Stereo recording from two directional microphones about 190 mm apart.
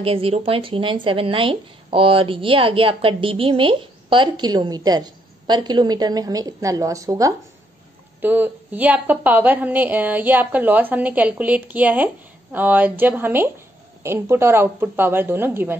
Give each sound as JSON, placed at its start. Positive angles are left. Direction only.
{"t": 0.0, "sound": "a woman's voice", "side_deg": -30}